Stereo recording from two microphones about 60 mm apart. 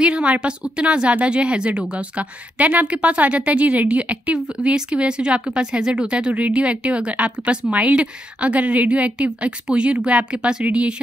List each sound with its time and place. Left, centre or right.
0.0 s speech: centre